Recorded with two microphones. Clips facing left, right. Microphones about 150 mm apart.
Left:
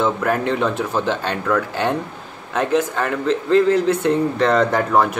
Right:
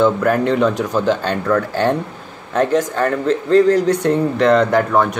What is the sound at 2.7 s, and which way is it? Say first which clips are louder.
Speech: right 3 dB; 40° right (ahead or behind).